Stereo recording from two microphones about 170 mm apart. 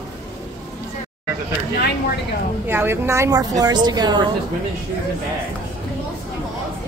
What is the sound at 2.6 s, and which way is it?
A woman's voice, 15° right (ahead or behind).